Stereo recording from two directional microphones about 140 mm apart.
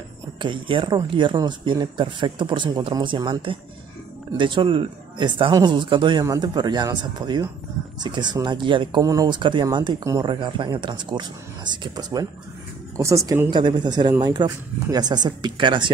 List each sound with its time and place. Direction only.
0.4 s speech: 35° right (ahead or behind)
9.0 s speech: 25° right (ahead or behind)
10.3 s speech: 35° right (ahead or behind)